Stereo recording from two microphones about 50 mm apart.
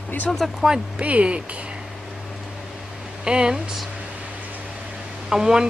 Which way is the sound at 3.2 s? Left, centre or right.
Centre.